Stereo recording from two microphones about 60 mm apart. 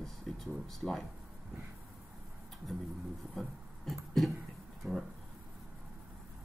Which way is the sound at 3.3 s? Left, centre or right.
Centre.